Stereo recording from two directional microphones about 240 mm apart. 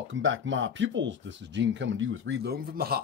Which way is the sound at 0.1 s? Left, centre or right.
Right.